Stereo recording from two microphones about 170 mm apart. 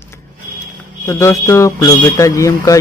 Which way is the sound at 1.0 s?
15° left (ahead or behind).